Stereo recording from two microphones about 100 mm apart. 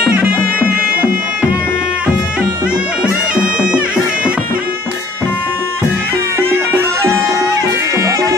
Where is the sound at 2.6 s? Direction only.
10° right (ahead or behind).